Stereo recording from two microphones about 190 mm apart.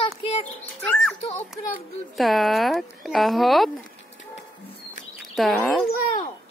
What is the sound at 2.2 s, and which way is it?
Speech, centre (ahead or behind).